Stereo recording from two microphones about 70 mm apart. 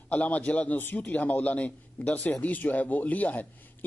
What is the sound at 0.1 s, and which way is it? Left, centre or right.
Speech, centre.